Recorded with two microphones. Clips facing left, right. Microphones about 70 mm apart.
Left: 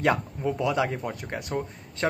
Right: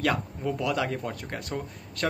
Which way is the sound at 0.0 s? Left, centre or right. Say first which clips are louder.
Left 3 dB; left.